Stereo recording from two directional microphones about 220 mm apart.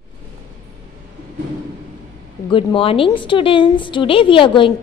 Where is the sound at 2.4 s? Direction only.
25° left (ahead or behind).